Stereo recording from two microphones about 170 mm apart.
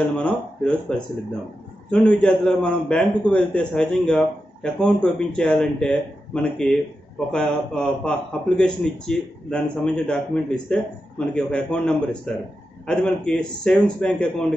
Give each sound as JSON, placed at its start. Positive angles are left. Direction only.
{"t": 0.2, "sound": "a man's voice", "side_deg": 5}